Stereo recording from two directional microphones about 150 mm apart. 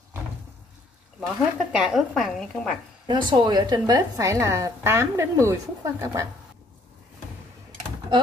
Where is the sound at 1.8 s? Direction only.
5° right (ahead or behind).